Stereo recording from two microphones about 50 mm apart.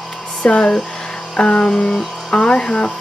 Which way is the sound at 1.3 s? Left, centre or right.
Centre.